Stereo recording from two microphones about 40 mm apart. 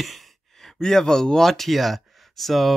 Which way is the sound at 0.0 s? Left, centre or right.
Centre.